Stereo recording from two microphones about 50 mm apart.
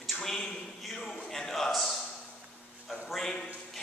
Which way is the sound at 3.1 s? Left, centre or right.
Centre.